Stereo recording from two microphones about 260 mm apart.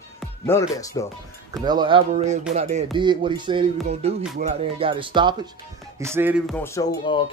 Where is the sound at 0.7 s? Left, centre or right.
Centre.